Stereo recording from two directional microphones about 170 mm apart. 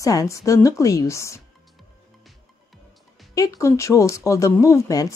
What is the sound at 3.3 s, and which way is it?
Speech, 20° left (ahead or behind).